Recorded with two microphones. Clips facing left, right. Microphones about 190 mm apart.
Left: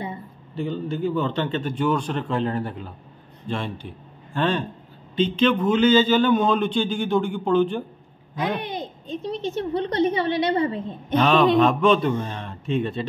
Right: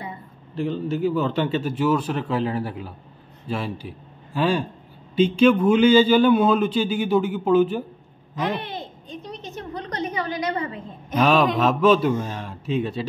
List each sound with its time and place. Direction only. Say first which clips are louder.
0.6 s a man's voice: right 2 dB; 5° right (ahead or behind)
8.4 s a woman's voice: left 1 dB; 15° left (ahead or behind); by 11.1 s 30° left (ahead or behind)
11.1 s a man's voice: left 2 dB; 5° right (ahead or behind)